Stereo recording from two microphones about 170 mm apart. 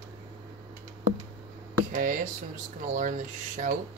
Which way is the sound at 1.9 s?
50° right (ahead or behind).